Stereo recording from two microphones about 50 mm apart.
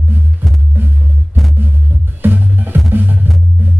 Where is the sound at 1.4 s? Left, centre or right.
Centre.